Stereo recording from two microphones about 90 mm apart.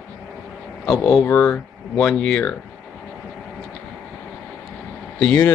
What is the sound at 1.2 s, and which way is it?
Speech, 20° left (ahead or behind).